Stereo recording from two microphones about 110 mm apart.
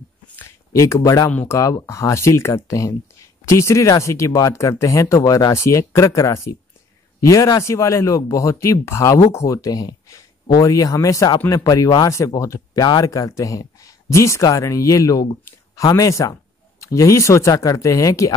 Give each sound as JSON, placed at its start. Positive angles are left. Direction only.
{"t": 0.7, "sound": "speech", "side_deg": 25}
{"t": 1.3, "sound": "speech", "side_deg": 15}
{"t": 1.6, "sound": "speech", "side_deg": 30}